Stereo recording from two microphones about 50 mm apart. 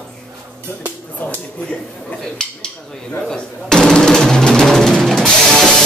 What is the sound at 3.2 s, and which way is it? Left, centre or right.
Drum, centre.